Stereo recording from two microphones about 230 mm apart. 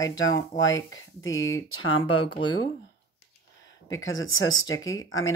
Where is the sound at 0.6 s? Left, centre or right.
Left.